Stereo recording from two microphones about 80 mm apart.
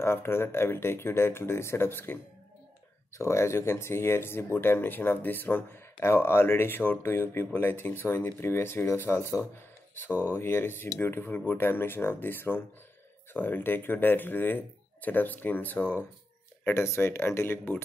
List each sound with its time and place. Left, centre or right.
0.0 s speech: left
3.2 s speech: left